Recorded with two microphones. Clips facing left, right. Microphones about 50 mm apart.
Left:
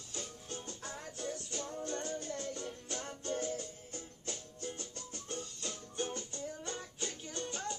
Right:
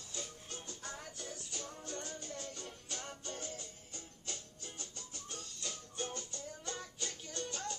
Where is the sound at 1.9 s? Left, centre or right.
Left.